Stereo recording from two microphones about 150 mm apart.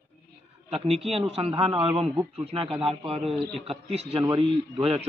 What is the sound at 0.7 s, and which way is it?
Speech, 40° right (ahead or behind).